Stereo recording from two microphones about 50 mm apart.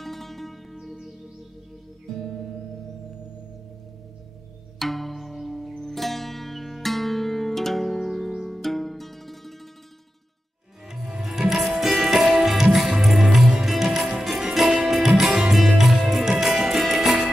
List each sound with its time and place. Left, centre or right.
0.0 s music: centre
4.7 s zither: centre
8.3 s music: centre
10.9 s music: centre